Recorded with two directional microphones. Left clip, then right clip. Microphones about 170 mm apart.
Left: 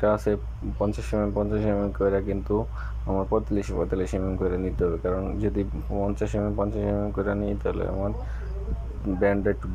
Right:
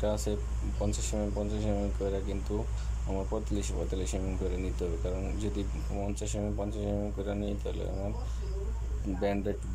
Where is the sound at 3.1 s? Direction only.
20° left (ahead or behind).